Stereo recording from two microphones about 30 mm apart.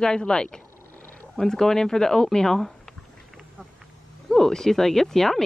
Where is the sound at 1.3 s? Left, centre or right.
Centre.